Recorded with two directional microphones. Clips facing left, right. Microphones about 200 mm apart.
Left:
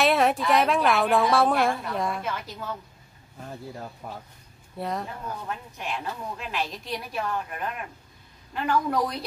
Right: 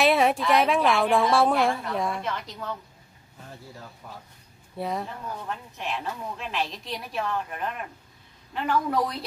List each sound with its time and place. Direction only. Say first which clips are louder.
0.0 s a woman's voice: right 1 dB; centre (ahead or behind)
4.0 s speech: left 4 dB; 55° left (ahead or behind)
4.7 s a woman's voice: right 1 dB; centre (ahead or behind)